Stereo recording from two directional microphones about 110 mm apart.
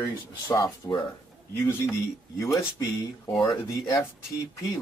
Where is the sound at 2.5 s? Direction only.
25° left (ahead or behind).